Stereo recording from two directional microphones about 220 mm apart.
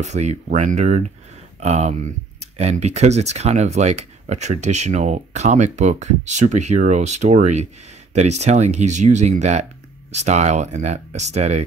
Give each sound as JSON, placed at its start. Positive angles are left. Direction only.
{"t": 0.0, "sound": "speech", "side_deg": -30}